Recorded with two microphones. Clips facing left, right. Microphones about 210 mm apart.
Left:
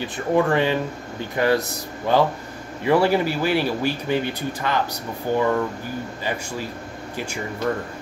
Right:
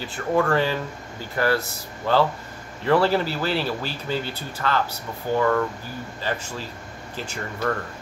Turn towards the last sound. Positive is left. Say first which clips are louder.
# left 2 dB
turn(degrees=10)  # may be behind; listen again after turning